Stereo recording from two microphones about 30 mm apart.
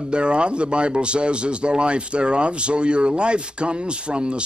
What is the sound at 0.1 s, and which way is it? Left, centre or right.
Speech, right.